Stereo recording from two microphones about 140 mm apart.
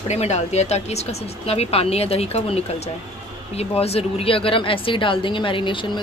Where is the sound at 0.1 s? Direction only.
50° left (ahead or behind).